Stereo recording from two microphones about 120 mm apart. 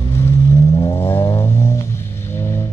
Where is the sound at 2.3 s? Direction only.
20° left (ahead or behind).